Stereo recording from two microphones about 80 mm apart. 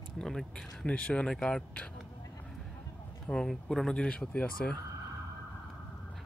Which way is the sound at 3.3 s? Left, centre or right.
Centre.